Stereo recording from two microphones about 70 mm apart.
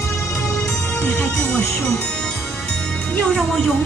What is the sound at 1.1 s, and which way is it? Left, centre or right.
Speech, centre.